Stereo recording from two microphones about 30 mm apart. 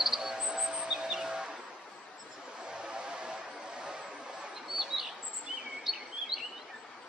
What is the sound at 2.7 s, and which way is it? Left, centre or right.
Vehicle, right.